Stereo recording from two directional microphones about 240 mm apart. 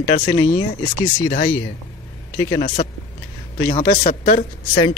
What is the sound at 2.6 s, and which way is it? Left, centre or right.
Speech, left.